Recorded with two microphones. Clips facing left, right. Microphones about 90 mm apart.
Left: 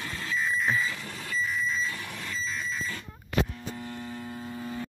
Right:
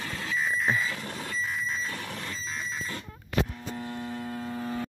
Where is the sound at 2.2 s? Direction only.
35° right (ahead or behind).